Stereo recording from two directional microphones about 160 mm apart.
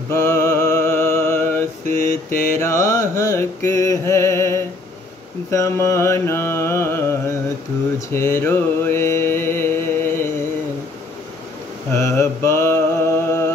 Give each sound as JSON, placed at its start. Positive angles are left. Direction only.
{"t": 0.1, "sound": "music", "side_deg": 15}
{"t": 5.5, "sound": "mantra", "side_deg": 20}
{"t": 11.9, "sound": "mantra", "side_deg": 15}